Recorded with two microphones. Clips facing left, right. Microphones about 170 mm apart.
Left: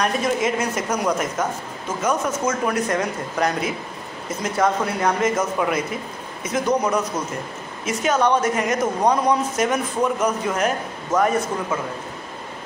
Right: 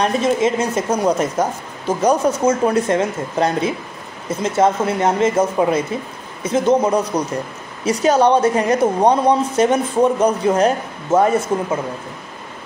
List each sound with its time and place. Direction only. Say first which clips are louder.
0.0 s a woman's voice: right 5 dB; 25° right (ahead or behind)